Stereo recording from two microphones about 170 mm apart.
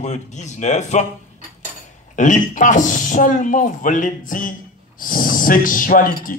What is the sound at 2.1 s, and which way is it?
A man's voice, 50° left (ahead or behind).